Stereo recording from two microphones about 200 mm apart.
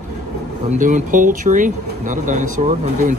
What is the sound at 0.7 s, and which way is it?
Speech, 40° right (ahead or behind).